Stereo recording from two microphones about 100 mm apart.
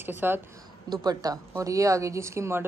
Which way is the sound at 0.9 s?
40° right (ahead or behind).